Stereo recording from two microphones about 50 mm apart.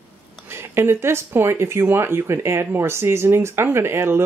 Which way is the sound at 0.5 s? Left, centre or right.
Right.